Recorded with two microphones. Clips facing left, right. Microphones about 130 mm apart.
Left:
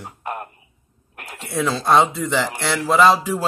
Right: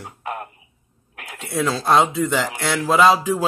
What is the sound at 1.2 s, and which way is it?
Speech, centre (ahead or behind).